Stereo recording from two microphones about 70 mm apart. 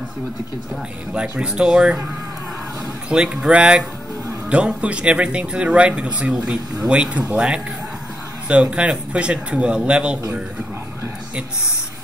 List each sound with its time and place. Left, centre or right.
1.4 s speech: centre
3.1 s speech: centre